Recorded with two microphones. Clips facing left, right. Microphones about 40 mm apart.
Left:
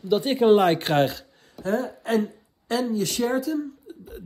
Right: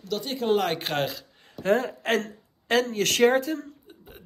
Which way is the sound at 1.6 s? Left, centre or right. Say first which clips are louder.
Right 2 dB; right.